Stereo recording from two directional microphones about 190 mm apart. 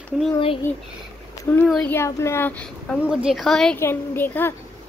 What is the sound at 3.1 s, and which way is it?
A woman's voice, 5° right (ahead or behind).